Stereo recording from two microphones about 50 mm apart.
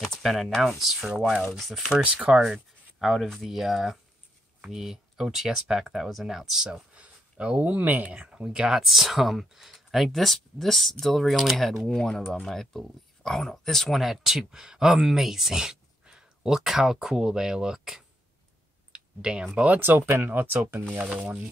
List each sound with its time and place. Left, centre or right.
0.0 s speech: centre
2.0 s speech: right
3.0 s speech: centre
6.7 s speech: right
18.9 s clicking: centre
19.5 s speech: right
20.2 s speech: right